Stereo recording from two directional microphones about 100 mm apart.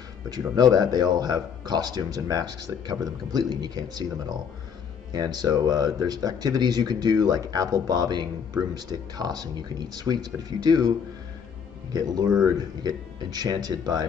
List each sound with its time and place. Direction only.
0.3 s speech: 40° right (ahead or behind)